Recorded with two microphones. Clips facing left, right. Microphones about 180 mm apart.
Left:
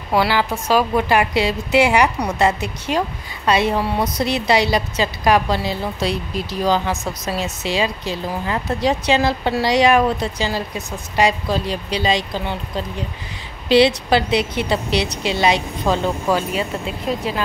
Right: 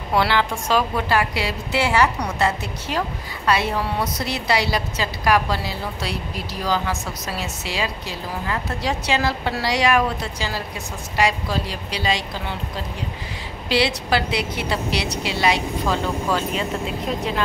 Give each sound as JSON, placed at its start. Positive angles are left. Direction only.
{"t": 0.1, "sound": "a woman's voice", "side_deg": 5}
{"t": 13.7, "sound": "a woman's voice", "side_deg": 20}